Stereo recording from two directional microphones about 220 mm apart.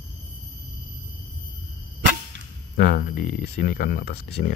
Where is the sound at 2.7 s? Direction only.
40° left (ahead or behind).